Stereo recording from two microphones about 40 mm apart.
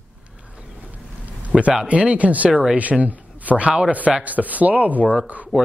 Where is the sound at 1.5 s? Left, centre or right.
Centre.